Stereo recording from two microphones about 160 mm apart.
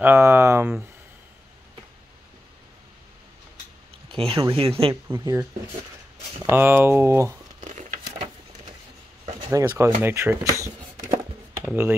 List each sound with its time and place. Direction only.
0.0 s speech: 15° right (ahead or behind)
4.1 s speech: 35° right (ahead or behind)
5.0 s speech: 20° right (ahead or behind)
6.5 s speech: 15° right (ahead or behind)
9.4 s speech: 20° right (ahead or behind)